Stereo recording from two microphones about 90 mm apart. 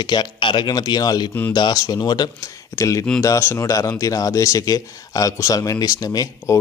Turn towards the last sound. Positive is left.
turn(degrees=45)  # may be behind; listen again after turning